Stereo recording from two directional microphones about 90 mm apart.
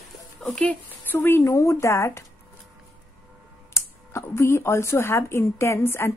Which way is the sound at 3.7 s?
35° left (ahead or behind).